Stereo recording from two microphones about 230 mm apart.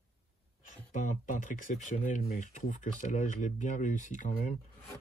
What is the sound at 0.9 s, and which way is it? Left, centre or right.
Speech, left.